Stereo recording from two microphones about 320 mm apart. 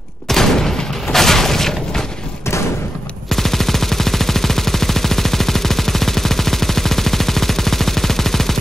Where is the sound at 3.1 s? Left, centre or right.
Centre.